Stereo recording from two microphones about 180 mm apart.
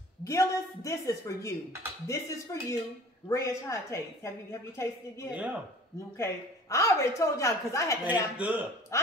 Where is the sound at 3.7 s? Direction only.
15° left (ahead or behind).